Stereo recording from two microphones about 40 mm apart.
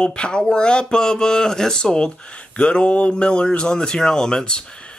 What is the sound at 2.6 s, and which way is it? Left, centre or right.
Speech, left.